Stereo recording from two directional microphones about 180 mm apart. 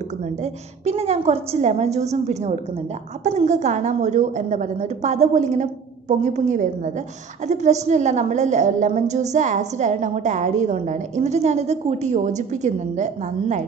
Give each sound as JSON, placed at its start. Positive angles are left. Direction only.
{"t": 0.2, "sound": "a woman's voice", "side_deg": -35}